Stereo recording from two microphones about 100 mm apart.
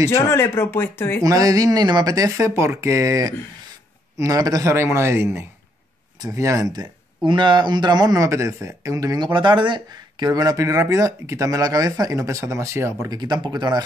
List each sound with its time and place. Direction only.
0.1 s speech: 25° left (ahead or behind)
1.2 s speech: 35° right (ahead or behind)
7.2 s speech: 50° right (ahead or behind)
9.3 s speech: 50° right (ahead or behind); by 13.1 s 30° right (ahead or behind)
13.1 s speech: 45° right (ahead or behind)